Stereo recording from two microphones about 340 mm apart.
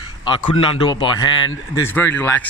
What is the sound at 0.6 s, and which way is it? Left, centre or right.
A man's voice, centre.